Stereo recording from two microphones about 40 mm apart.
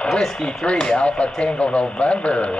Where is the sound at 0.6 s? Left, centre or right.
Left.